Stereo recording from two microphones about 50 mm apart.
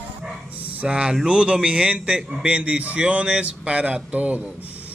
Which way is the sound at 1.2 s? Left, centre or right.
Centre.